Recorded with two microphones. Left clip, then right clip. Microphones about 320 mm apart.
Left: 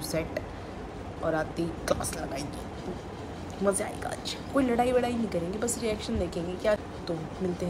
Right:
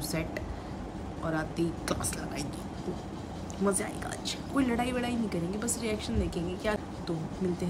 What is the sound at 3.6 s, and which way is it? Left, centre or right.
A woman's voice, centre.